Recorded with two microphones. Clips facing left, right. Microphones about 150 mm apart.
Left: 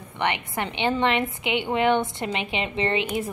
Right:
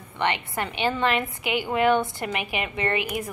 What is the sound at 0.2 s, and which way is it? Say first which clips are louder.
A woman's voice: even; 20° left (ahead or behind).